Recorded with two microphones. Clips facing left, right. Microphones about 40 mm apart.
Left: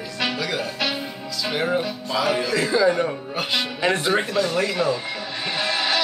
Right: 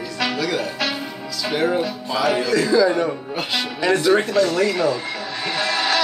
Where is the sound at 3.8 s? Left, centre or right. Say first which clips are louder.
Right 4 dB; left.